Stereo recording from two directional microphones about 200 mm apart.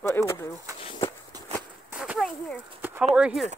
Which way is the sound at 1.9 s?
5° right (ahead or behind).